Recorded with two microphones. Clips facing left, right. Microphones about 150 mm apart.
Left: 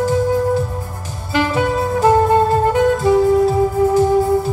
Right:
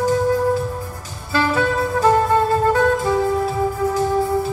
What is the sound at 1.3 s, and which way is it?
Saxophone, 20° left (ahead or behind).